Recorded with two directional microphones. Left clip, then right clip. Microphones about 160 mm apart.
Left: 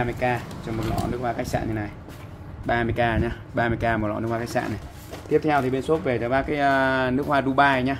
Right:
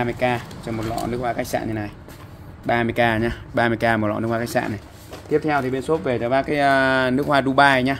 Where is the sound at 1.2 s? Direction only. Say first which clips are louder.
Right 3 dB; 50° right (ahead or behind).